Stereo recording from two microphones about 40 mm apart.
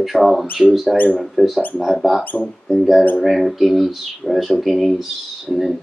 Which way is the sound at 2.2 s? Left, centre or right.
Left.